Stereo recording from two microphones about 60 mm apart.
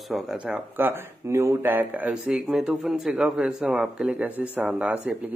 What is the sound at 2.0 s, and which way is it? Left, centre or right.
Speech, centre.